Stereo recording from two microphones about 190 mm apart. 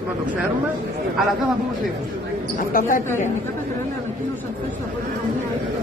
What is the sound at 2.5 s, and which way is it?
Speech, 45° left (ahead or behind).